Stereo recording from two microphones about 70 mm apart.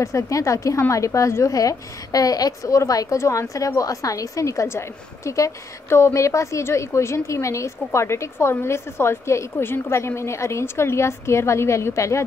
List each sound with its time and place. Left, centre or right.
0.0 s a woman's voice: left